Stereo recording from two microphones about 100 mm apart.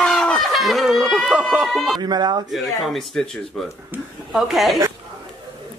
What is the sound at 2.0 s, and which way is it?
Speech, 45° right (ahead or behind).